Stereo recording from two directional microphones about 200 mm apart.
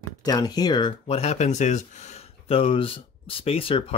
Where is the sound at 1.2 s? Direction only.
35° left (ahead or behind).